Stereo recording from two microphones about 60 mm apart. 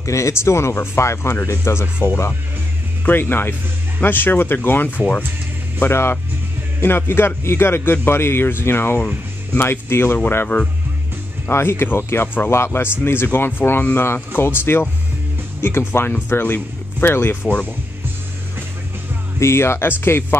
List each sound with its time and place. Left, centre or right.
0.0 s speech: left
3.1 s a man's voice: left
5.9 s a man's voice: left
15.9 s a man's voice: left
19.4 s speech: left